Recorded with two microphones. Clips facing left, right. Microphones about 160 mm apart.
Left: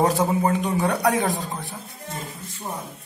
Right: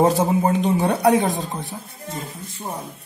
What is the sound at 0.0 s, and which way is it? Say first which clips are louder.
Speech: right 3 dB; 25° right (ahead or behind).